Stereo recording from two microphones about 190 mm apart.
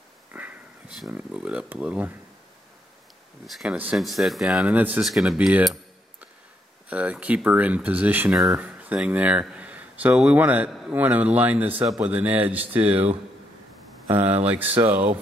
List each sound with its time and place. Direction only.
0.3 s speech: 10° right (ahead or behind)
3.4 s speech: 5° right (ahead or behind)
6.9 s speech: 10° right (ahead or behind)
14.0 s speech: 10° right (ahead or behind)